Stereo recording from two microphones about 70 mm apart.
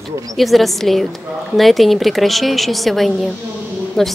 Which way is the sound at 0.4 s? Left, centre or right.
Centre.